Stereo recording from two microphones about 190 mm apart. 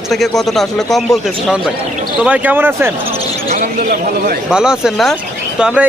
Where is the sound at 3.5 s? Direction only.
50° right (ahead or behind).